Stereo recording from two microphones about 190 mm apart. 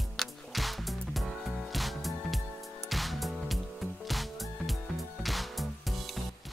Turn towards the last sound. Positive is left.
turn(degrees=0)  # may be behind; listen again after turning